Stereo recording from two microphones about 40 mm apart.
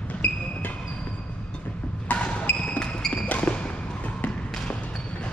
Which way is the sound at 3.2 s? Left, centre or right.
Left.